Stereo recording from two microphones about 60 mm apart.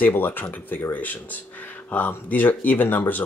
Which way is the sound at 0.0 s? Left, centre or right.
Left.